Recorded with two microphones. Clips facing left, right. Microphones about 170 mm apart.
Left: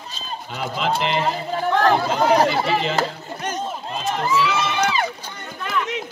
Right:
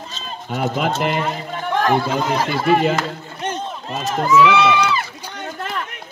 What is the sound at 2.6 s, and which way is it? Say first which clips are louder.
Speech: right 5 dB; 50° right (ahead or behind).